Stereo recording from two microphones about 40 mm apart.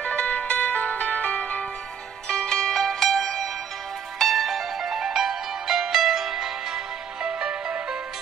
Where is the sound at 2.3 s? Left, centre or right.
Centre.